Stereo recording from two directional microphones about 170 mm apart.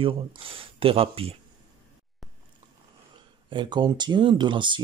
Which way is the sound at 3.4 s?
25° right (ahead or behind).